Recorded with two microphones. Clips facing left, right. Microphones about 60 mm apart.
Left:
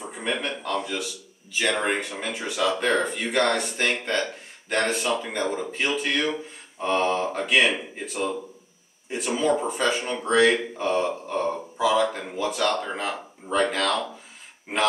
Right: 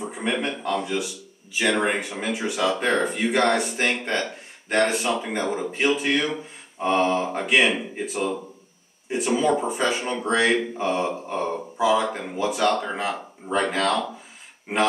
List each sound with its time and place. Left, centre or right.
0.0 s a man's voice: centre
6.8 s mantra: centre
7.2 s speech: centre
9.2 s speech: centre
13.7 s speech: centre